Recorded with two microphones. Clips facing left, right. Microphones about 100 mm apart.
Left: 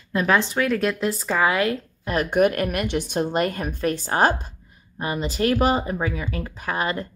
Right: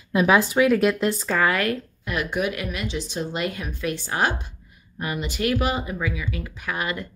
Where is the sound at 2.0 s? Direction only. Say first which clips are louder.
Left 6 dB; 45° left (ahead or behind).